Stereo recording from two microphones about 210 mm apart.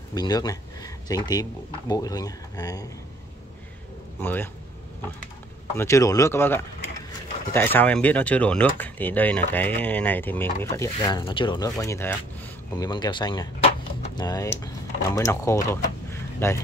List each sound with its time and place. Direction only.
0.1 s speech: 20° left (ahead or behind)
4.2 s speech: 10° left (ahead or behind)
5.8 s speech: 15° left (ahead or behind)